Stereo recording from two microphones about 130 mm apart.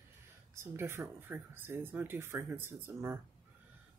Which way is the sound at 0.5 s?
20° right (ahead or behind).